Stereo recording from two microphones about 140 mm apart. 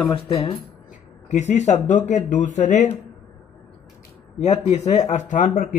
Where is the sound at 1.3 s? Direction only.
55° left (ahead or behind).